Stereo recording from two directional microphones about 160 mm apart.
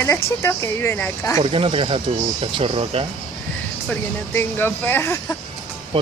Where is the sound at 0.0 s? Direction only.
15° left (ahead or behind).